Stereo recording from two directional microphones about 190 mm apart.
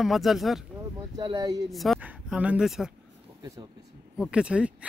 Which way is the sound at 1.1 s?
20° right (ahead or behind).